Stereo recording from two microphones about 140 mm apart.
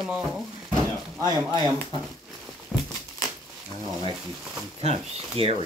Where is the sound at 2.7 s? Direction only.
5° right (ahead or behind).